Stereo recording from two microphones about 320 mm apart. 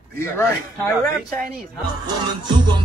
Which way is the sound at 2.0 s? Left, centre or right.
Centre.